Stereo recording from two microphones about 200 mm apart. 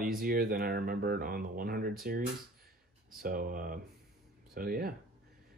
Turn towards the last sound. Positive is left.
turn(degrees=-45)  # may be behind; listen again after turning